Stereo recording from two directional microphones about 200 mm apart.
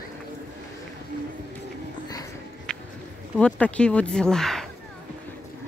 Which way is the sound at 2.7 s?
5° left (ahead or behind).